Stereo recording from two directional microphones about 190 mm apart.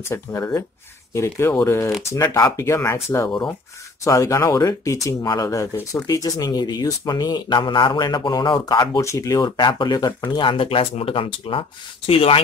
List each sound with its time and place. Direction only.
0.1 s speech: 15° left (ahead or behind)